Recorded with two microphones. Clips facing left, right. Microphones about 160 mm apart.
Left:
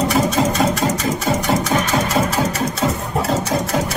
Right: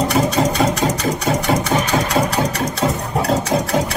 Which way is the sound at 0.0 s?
Centre (ahead or behind).